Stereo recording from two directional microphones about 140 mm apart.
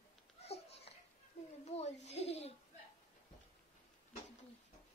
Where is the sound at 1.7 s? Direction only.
50° left (ahead or behind).